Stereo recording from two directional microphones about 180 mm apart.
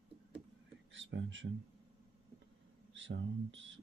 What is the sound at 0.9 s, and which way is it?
Speech, 90° right.